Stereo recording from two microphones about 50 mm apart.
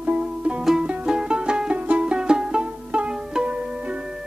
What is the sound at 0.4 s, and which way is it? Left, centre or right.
Music, right.